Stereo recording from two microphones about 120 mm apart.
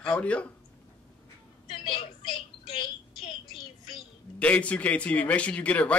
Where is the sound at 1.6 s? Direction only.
45° left (ahead or behind).